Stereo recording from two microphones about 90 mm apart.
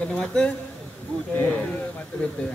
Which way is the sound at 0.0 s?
10° left (ahead or behind).